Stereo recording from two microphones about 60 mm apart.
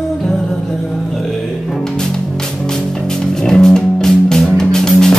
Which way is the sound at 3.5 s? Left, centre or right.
Centre.